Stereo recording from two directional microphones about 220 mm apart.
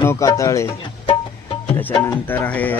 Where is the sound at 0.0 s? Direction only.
15° left (ahead or behind).